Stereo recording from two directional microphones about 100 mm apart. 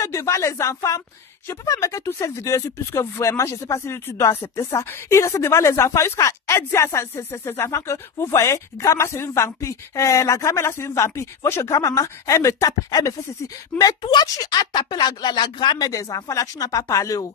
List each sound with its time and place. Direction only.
0.0 s speech: 30° left (ahead or behind)
13.7 s a woman's voice: 10° left (ahead or behind)
14.0 s speech: 40° left (ahead or behind)